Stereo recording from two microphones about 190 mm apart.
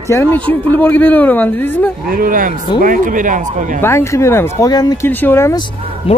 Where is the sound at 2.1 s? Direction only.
45° right (ahead or behind).